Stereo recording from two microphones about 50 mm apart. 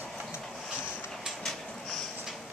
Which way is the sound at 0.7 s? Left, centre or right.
Centre.